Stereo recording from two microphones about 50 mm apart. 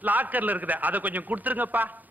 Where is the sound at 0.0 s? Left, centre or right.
Right.